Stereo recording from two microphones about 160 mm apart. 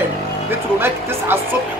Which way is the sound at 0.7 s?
15° right (ahead or behind).